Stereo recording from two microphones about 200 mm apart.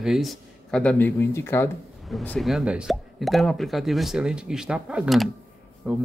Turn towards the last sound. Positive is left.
turn(degrees=-5)  # may be behind; listen again after turning